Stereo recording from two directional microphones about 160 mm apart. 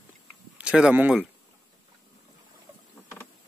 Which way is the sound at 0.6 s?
5° right (ahead or behind).